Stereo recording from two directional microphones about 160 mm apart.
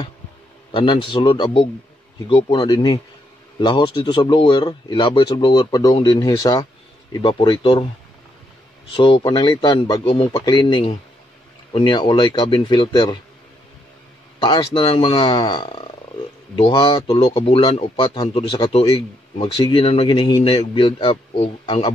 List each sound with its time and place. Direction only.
0.7 s a man's voice: 30° left (ahead or behind)
8.9 s a man's voice: 30° left (ahead or behind)
14.4 s a man's voice: 30° left (ahead or behind)